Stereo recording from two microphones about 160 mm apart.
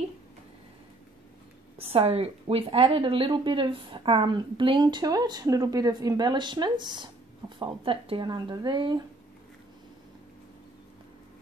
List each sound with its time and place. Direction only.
1.8 s a woman's voice: 40° right (ahead or behind)